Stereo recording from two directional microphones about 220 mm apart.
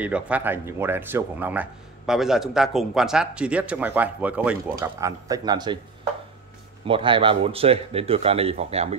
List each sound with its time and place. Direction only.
0.0 s speech: 5° right (ahead or behind)
6.8 s a man's voice: 25° right (ahead or behind)